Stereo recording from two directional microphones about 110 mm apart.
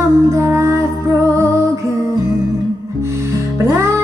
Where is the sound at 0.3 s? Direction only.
20° right (ahead or behind).